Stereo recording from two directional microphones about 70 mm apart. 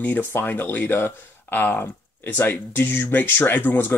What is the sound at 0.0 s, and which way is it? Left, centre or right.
Speech, left.